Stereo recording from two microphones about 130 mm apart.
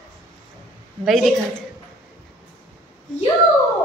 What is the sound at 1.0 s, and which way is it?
Speech, centre (ahead or behind).